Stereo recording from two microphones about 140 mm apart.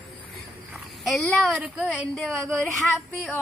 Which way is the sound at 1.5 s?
10° right (ahead or behind).